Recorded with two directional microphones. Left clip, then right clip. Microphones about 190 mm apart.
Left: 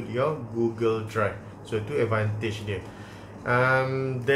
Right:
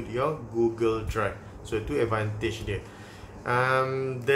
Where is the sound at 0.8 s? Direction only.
15° right (ahead or behind).